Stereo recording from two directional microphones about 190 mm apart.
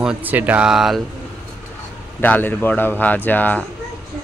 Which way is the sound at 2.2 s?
10° left (ahead or behind).